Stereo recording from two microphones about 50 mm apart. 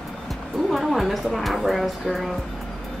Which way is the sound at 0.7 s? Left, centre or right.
Centre.